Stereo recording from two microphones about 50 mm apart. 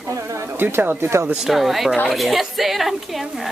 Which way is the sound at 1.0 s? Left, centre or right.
Right.